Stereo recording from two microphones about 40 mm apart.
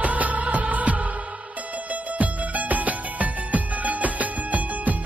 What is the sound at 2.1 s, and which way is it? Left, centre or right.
Music, right.